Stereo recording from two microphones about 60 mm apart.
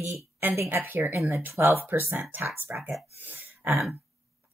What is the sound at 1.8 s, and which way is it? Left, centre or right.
Speech, right.